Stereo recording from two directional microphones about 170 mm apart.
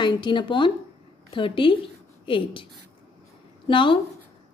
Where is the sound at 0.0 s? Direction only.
30° left (ahead or behind).